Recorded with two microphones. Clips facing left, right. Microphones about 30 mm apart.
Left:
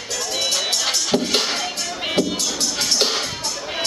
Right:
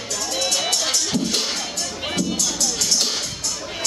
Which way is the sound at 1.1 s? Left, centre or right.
Left.